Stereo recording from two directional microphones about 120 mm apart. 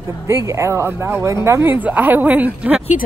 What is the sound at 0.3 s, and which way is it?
Speech, 25° right (ahead or behind).